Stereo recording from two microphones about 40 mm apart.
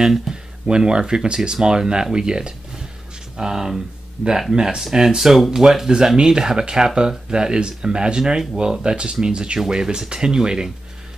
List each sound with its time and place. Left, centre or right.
0.0 s speech: centre